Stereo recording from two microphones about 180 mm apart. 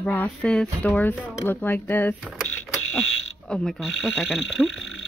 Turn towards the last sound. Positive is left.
turn(degrees=0)  # may be behind; listen again after turning